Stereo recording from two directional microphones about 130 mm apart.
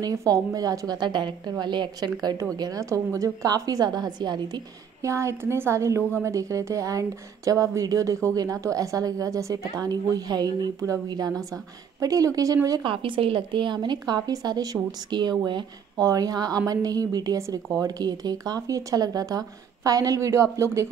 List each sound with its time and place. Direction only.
0.0 s a woman's voice: 25° right (ahead or behind)
12.9 s a woman's voice: 40° right (ahead or behind); by 20.9 s 20° right (ahead or behind)